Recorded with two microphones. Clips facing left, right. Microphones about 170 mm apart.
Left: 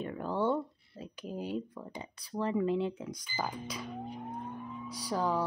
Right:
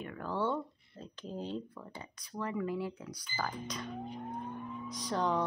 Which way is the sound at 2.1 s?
30° left (ahead or behind).